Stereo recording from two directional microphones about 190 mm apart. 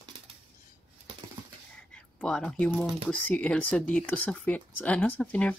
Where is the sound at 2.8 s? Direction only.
5° left (ahead or behind).